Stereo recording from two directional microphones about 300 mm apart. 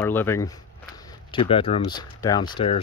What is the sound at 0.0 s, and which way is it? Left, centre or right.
Speech, centre.